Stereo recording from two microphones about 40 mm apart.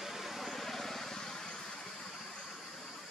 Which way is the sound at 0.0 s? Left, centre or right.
Centre.